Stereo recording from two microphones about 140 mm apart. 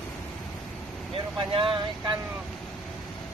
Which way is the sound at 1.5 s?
40° right (ahead or behind).